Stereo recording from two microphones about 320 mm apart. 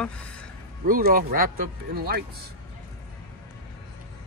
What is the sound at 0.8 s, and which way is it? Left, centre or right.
Speech, right.